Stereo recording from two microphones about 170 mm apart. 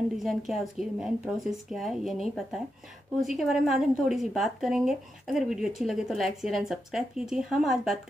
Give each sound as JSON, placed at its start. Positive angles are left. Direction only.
{"t": 0.2, "sound": "a woman's voice", "side_deg": 0}